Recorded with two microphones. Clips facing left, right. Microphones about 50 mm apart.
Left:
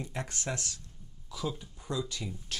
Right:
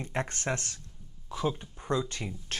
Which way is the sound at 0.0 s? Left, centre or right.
Right.